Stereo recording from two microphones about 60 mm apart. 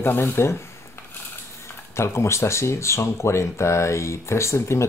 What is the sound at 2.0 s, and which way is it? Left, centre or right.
Speech, left.